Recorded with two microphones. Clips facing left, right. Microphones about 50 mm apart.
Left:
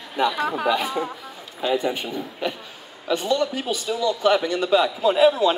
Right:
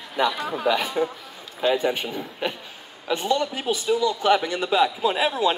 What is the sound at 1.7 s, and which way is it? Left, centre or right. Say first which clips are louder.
Speech: right 1 dB; right.